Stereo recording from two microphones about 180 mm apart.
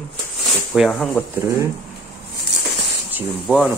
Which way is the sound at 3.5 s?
10° right (ahead or behind).